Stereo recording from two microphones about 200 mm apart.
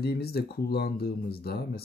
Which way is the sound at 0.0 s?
50° left (ahead or behind).